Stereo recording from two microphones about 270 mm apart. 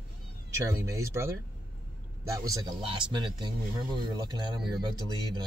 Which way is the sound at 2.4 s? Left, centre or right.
Centre.